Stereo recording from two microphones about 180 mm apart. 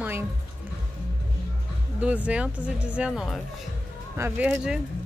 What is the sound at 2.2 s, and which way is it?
A woman's voice, 5° right (ahead or behind).